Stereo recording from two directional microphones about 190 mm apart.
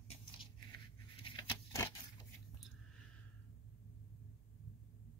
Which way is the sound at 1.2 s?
25° left (ahead or behind).